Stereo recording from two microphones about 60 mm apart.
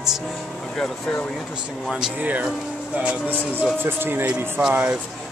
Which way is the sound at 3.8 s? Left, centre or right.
Right.